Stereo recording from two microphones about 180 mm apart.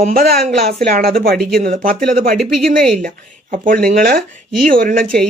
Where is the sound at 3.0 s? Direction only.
50° right (ahead or behind).